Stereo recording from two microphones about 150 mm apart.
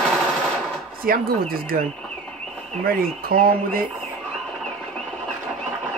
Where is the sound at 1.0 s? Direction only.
75° right (ahead or behind).